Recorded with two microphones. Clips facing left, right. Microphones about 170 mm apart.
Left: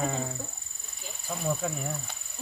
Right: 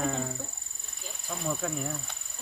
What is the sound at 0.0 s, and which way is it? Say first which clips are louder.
Speech: even; 5° left (ahead or behind).